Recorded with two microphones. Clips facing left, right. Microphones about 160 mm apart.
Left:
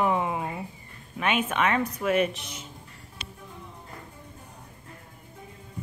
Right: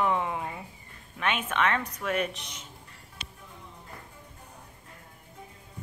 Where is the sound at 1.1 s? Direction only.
10° left (ahead or behind).